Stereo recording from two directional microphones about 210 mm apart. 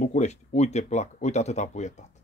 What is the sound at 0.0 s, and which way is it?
Speech, 35° left (ahead or behind).